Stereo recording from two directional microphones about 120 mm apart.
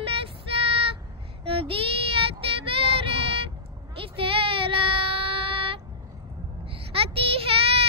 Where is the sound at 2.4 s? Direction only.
50° right (ahead or behind).